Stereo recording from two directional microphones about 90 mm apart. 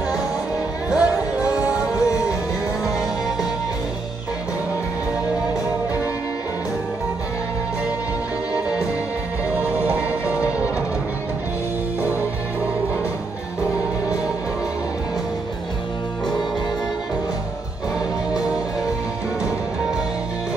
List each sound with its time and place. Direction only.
0.8 s music: 10° right (ahead or behind)
9.6 s music: 15° right (ahead or behind)